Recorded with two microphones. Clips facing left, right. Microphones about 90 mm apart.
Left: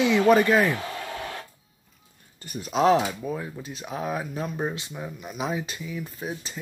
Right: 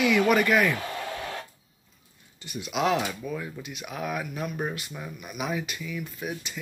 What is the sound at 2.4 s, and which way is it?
Speech, 40° left (ahead or behind).